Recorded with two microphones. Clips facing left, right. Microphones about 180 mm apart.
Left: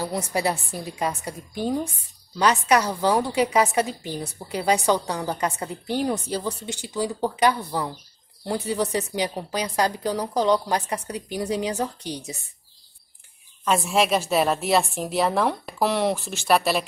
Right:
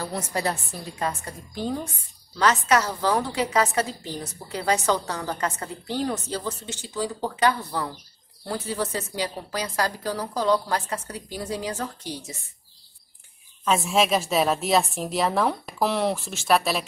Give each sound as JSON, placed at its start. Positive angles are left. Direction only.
{"t": 0.0, "sound": "a woman's voice", "side_deg": 15}
{"t": 13.7, "sound": "a woman's voice", "side_deg": 0}